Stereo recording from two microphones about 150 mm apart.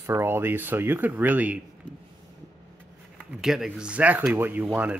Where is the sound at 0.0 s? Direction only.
15° right (ahead or behind).